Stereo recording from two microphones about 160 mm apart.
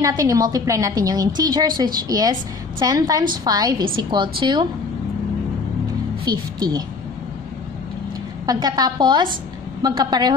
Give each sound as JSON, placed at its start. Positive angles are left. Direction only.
{"t": 0.0, "sound": "a woman's voice", "side_deg": -20}
{"t": 6.3, "sound": "a woman's voice", "side_deg": -25}
{"t": 8.5, "sound": "a woman's voice", "side_deg": -25}